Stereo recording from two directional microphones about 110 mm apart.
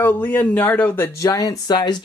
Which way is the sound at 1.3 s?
30° left (ahead or behind).